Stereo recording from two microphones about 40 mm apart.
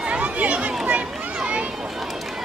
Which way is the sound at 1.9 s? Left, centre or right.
Centre.